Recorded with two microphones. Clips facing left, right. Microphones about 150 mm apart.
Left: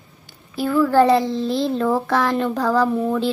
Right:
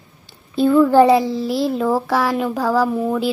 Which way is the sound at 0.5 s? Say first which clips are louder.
Right 4 dB; 20° right (ahead or behind).